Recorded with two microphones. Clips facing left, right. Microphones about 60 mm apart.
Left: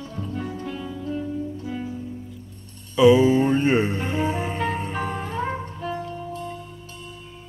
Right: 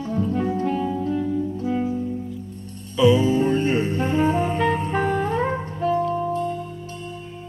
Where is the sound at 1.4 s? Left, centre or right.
Right.